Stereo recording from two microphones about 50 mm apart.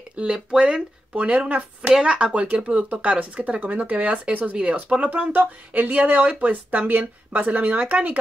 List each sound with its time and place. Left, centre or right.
0.1 s speech: right
5.3 s speech: right